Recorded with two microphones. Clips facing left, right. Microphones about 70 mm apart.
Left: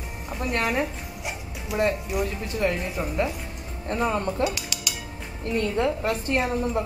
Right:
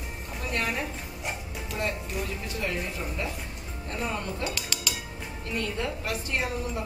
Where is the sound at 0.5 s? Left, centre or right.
Left.